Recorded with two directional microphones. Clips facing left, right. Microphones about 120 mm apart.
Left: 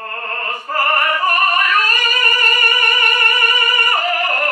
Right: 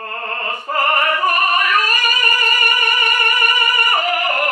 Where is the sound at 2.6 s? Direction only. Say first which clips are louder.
Even; 15° right (ahead or behind).